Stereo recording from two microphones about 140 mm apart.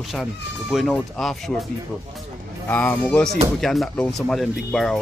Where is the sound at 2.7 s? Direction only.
10° left (ahead or behind).